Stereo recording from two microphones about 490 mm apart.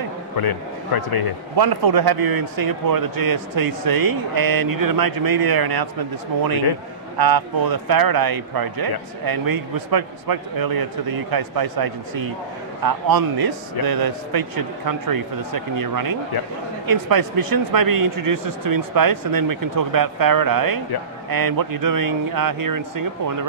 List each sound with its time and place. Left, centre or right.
0.4 s speech: left
1.6 s a man's voice: right